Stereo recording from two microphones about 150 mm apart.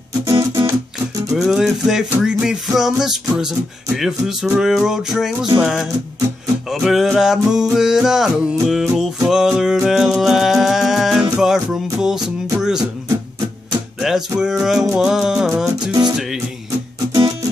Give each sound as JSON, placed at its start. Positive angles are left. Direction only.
{"t": 0.2, "sound": "music", "side_deg": -20}
{"t": 1.3, "sound": "music", "side_deg": -5}
{"t": 14.0, "sound": "music", "side_deg": -5}
{"t": 15.9, "sound": "music", "side_deg": -25}